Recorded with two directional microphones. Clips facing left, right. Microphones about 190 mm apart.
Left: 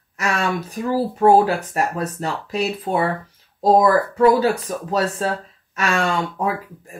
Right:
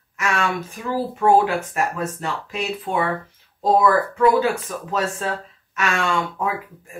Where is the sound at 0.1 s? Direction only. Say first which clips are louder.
Left 1 dB; 35° left (ahead or behind).